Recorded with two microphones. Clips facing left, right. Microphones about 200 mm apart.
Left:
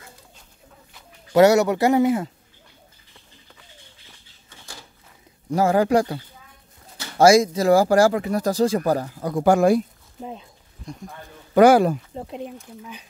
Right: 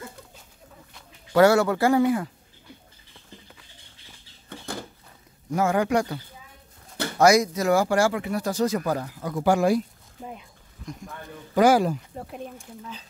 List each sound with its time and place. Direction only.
1.3 s speech: 20° left (ahead or behind)
4.5 s a sound: 55° right (ahead or behind)
5.5 s speech: 35° left (ahead or behind)
9.3 s speech: 45° left (ahead or behind)
11.5 s speech: 60° left (ahead or behind)
12.3 s speech: 20° left (ahead or behind)